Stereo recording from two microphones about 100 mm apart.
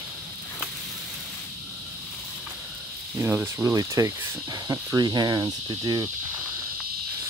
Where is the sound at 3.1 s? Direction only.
20° right (ahead or behind).